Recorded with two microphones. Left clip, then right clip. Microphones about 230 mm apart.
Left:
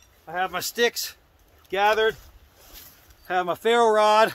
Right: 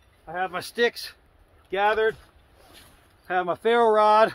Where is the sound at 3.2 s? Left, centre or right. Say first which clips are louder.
Left 1 dB; centre.